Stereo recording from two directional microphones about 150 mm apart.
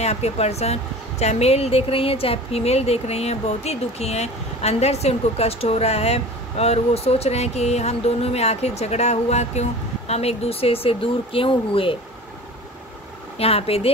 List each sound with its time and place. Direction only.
0.0 s speech: 45° left (ahead or behind)
13.4 s speech: 40° left (ahead or behind)